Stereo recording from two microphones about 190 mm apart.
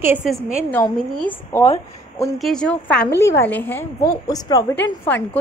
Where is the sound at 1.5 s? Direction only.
15° left (ahead or behind).